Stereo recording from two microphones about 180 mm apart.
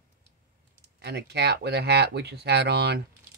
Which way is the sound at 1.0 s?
70° right (ahead or behind).